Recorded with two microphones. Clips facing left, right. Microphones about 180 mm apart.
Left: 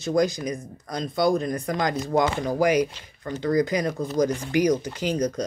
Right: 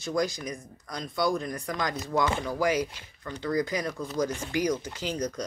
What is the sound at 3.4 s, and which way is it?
Speech, 45° left (ahead or behind).